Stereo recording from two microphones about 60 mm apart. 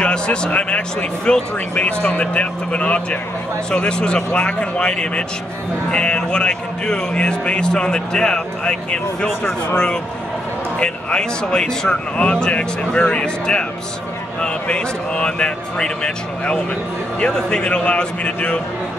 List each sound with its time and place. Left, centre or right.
0.0 s speech: centre
10.8 s speech: centre